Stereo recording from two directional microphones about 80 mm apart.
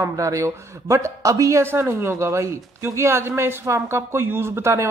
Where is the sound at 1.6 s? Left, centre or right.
Right.